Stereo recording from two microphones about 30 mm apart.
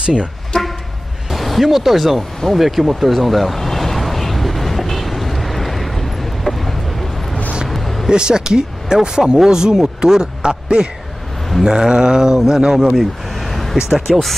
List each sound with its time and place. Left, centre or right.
0.0 s speech: right
1.3 s music: centre
1.7 s speech: centre
3.5 s vehicle: centre
7.7 s a sound: centre
8.1 s speech: right
11.6 s speech: centre
13.5 s vehicle: centre
14.1 s speech: centre